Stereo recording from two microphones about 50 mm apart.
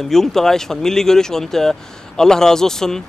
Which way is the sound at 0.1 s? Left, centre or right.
Centre.